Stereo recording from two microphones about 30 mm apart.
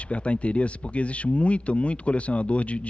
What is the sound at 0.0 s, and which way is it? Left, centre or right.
Speech, left.